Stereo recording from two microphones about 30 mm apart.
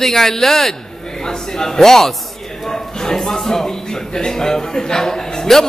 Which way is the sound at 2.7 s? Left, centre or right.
Centre.